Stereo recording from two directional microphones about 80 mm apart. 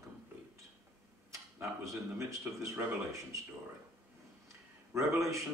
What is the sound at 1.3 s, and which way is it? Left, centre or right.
Speech, right.